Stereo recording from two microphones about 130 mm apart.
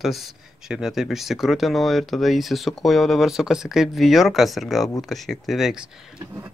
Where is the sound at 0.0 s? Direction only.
Centre (ahead or behind).